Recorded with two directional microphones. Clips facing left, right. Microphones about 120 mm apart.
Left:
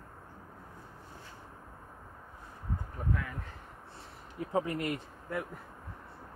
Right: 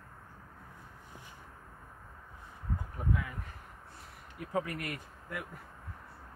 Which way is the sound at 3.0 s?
10° right (ahead or behind).